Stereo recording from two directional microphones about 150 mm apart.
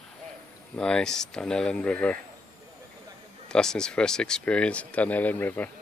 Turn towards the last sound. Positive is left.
turn(degrees=15)  # may be behind; listen again after turning